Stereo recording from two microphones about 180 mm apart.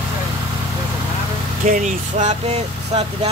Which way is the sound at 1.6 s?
45° right (ahead or behind).